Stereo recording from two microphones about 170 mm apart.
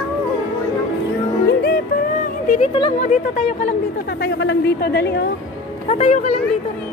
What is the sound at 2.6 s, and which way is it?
Speech, 30° left (ahead or behind).